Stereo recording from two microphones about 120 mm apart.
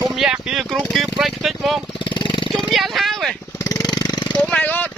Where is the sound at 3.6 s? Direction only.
30° left (ahead or behind).